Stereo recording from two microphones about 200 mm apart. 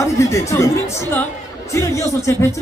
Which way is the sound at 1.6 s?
15° left (ahead or behind).